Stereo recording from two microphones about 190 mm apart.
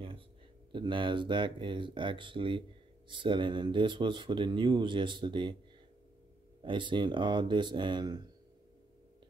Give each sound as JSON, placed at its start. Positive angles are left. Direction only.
{"t": 0.7, "sound": "speech", "side_deg": -25}
{"t": 6.6, "sound": "speech", "side_deg": -25}